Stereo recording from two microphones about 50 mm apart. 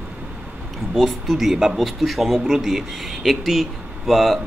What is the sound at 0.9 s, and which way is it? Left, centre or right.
Speech, centre.